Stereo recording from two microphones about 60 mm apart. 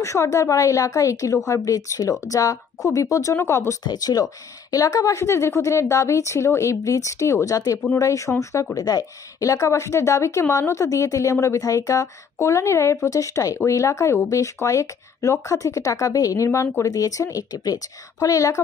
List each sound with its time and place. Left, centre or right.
0.0 s a woman's voice: left
3.3 s speech: left
4.0 s speech: left
5.2 s a woman's voice: left
8.7 s a woman's voice: left
13.7 s a woman's voice: left
16.4 s speech: left
16.9 s speech: left
18.2 s a woman's voice: left